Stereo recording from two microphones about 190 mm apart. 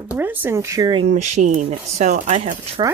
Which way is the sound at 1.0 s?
35° right (ahead or behind).